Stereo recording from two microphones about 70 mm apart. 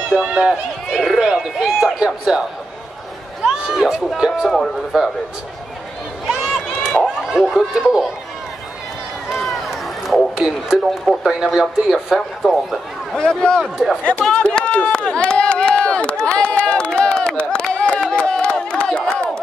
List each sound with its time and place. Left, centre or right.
0.1 s speech: centre
3.4 s speech: centre
6.2 s run: centre
7.2 s speech: centre
9.3 s a sound: centre
10.3 s speech: centre
13.1 s a man's voice: centre
14.4 s run: centre